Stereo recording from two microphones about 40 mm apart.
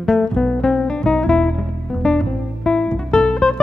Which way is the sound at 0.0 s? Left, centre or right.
Centre.